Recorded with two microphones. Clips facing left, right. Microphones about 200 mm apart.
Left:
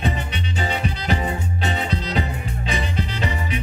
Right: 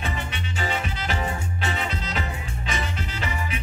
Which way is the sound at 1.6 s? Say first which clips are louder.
Left 4 dB; 35° left (ahead or behind).